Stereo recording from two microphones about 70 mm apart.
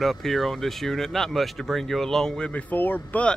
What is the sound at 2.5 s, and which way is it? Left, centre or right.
Speech, left.